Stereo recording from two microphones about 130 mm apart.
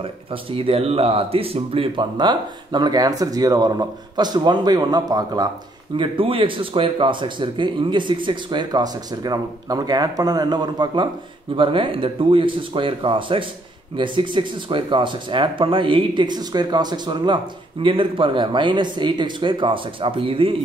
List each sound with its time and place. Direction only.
0.0 s speech: 45° right (ahead or behind); by 5.5 s 30° right (ahead or behind)
5.9 s speech: 45° right (ahead or behind)